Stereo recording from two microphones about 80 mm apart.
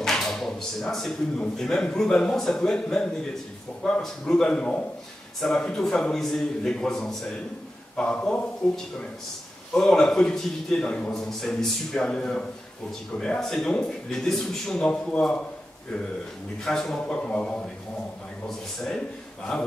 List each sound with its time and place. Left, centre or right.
0.0 s a sound: centre
1.4 s a man's voice: centre
16.6 s a man's voice: centre
19.5 s a man's voice: centre